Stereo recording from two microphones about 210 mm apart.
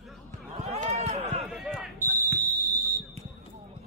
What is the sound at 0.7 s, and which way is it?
Run, 30° right (ahead or behind).